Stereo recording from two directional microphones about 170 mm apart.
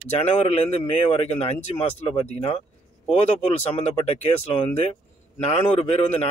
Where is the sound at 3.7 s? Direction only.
35° left (ahead or behind).